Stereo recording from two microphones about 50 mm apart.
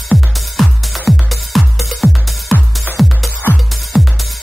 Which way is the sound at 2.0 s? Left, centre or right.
Left.